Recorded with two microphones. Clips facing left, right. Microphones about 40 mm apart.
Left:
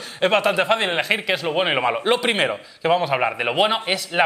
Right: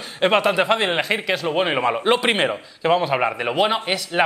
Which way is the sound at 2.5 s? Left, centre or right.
Centre.